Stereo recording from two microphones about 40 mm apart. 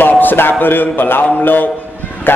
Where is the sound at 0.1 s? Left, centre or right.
Left.